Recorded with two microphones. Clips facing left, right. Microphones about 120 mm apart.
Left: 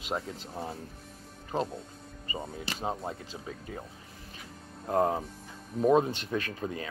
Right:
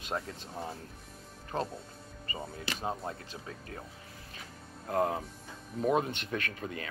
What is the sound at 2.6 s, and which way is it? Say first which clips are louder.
Speech: left 1 dB; 25° left (ahead or behind).